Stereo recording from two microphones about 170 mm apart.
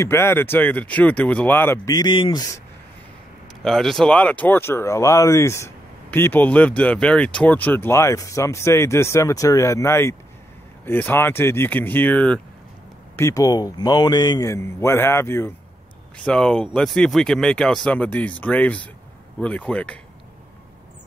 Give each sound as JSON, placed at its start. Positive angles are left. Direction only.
{"t": 0.0, "sound": "speech", "side_deg": 15}
{"t": 3.6, "sound": "speech", "side_deg": 0}